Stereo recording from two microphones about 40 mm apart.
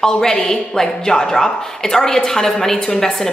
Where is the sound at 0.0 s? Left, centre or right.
Centre.